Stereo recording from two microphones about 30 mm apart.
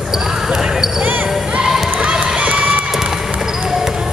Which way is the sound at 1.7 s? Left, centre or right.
Centre.